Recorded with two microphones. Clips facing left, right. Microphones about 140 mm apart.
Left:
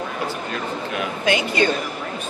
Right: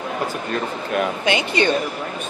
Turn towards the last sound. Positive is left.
turn(degrees=-20)  # may be behind; listen again after turning